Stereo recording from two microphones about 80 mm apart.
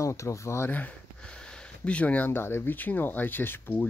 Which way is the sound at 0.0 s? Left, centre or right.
Left.